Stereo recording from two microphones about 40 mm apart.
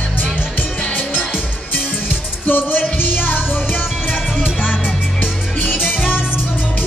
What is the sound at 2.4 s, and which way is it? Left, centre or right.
Music, left.